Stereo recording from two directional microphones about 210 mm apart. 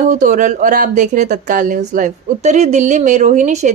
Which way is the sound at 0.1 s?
40° right (ahead or behind).